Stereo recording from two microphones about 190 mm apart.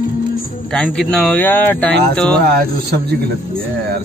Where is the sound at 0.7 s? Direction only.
5° left (ahead or behind).